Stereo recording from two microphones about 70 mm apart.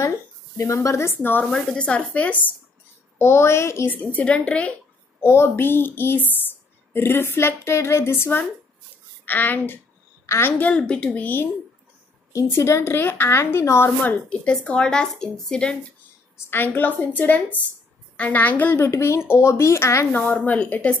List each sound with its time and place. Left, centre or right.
0.6 s a woman's voice: left
1.4 s a woman's voice: centre
3.2 s a woman's voice: left
3.9 s a woman's voice: left
5.2 s a woman's voice: left
10.2 s a woman's voice: left
10.8 s speech: centre
12.4 s a woman's voice: left
14.0 s speech: centre
16.4 s a woman's voice: left
18.8 s a woman's voice: left
20.2 s a woman's voice: left